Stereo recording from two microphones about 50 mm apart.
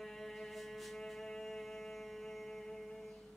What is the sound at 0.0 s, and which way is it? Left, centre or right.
Music, centre.